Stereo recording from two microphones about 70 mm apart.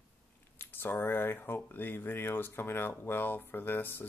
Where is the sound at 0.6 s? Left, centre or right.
Left.